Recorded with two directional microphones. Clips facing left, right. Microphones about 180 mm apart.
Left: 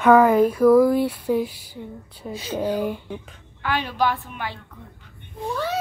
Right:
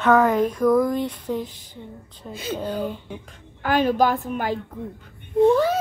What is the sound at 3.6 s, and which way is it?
Speech, 45° right (ahead or behind).